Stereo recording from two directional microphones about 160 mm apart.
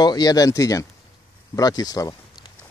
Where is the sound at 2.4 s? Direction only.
25° left (ahead or behind).